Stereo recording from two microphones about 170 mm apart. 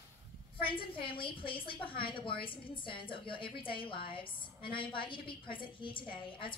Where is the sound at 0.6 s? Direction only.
30° left (ahead or behind).